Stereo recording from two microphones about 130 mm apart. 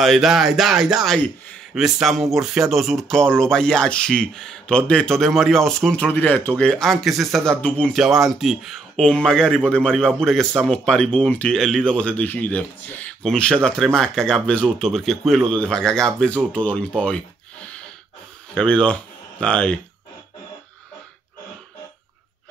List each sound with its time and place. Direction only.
0.0 s speech: centre (ahead or behind)
7.6 s speech: 10° left (ahead or behind)
7.9 s speech: centre (ahead or behind)